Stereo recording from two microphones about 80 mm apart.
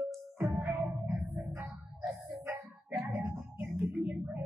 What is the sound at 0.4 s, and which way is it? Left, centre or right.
Music, right.